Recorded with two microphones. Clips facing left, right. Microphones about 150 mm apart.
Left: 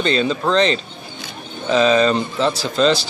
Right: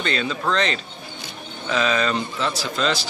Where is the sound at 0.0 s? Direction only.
25° left (ahead or behind).